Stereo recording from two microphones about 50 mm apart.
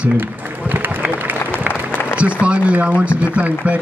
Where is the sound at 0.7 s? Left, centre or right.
Right.